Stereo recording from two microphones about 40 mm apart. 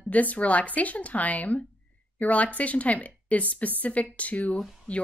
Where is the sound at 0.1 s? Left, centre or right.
Left.